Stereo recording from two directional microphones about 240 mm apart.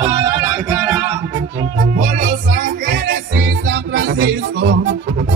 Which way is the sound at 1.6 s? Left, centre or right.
Right.